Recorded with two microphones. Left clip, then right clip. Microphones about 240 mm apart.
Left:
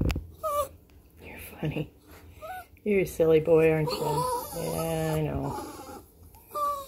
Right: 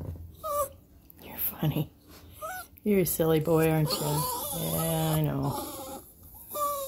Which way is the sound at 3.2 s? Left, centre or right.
Right.